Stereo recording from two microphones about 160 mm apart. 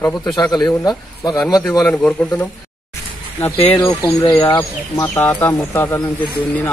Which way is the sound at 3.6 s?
10° left (ahead or behind).